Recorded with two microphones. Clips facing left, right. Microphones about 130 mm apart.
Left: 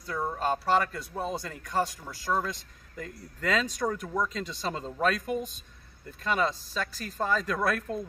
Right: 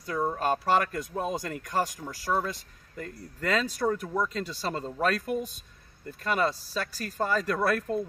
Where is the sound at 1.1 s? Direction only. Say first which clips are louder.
Right 2 dB; 10° right (ahead or behind).